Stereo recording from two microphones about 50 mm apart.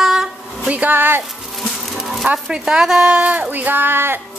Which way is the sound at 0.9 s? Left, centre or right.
Right.